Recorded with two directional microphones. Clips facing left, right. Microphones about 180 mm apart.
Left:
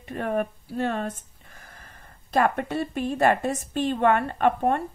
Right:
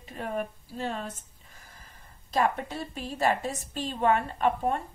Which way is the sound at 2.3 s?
60° left (ahead or behind).